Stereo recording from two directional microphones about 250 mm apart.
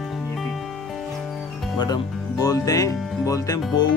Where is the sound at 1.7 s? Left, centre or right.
Centre.